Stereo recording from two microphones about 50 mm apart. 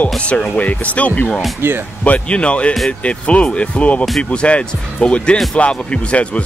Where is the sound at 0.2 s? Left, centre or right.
Left.